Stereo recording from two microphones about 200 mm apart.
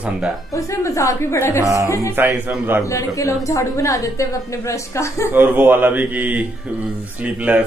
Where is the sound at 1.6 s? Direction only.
15° right (ahead or behind).